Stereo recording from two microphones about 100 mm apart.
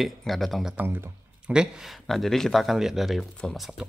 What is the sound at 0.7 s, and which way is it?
Speech, 20° right (ahead or behind).